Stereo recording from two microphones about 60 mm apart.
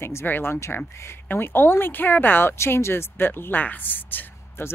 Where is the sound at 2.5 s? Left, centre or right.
Left.